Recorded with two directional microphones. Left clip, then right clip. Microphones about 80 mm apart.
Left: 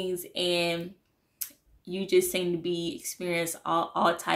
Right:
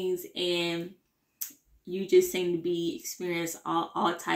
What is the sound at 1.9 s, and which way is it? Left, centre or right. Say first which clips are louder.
Speech: right 1 dB; left.